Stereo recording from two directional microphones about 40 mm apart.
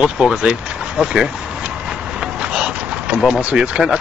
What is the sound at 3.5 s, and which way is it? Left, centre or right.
Speech, right.